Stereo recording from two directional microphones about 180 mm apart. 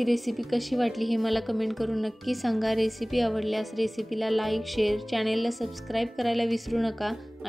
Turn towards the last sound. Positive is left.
turn(degrees=0)  # may be behind; listen again after turning